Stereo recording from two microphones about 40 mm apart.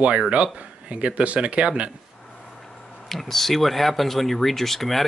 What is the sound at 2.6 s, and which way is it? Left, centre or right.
Speech, centre.